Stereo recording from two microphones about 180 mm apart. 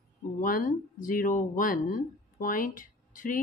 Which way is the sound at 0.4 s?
50° left (ahead or behind).